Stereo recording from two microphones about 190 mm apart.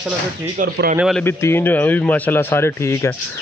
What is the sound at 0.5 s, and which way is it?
Speech, 50° right (ahead or behind).